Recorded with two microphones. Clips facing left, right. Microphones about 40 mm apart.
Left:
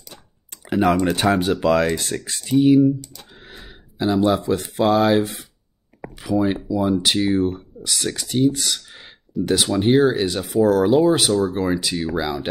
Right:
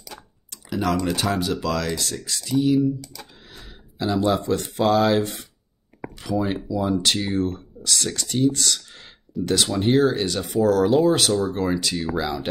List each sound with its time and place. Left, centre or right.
0.7 s typing: left
0.9 s speech: left
3.4 s a sound: left
4.0 s speech: centre